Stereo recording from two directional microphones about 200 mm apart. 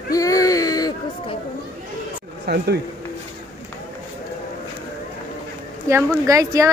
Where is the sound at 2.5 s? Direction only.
55° right (ahead or behind).